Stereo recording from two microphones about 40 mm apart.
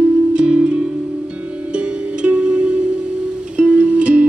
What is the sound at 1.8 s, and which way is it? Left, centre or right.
Music, right.